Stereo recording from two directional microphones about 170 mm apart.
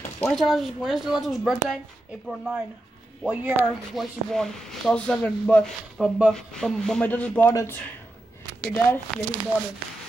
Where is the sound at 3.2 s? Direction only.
10° right (ahead or behind).